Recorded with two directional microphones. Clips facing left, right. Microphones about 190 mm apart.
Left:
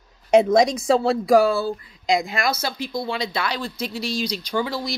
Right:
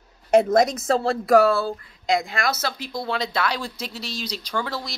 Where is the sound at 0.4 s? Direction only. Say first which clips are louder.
Left 1 dB; 5° right (ahead or behind).